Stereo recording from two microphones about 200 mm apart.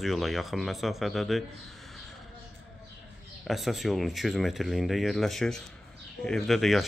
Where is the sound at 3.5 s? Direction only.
Centre (ahead or behind).